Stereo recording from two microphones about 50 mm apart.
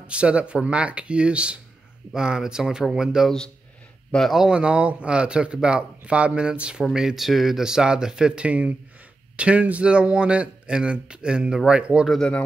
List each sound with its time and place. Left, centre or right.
0.0 s speech: right
4.1 s speech: centre
4.5 s speech: right
6.9 s speech: centre